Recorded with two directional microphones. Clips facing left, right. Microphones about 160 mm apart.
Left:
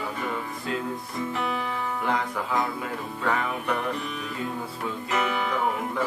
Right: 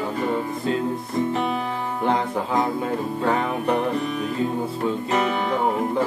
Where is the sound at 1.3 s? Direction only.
30° right (ahead or behind).